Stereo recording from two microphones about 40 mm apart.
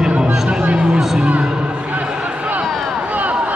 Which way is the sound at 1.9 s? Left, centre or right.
Right.